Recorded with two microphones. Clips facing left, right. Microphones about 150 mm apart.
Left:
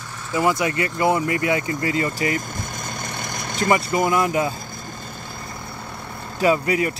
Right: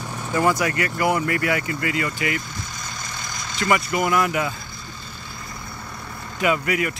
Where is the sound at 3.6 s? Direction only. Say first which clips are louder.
Left 2 dB; 25° left (ahead or behind).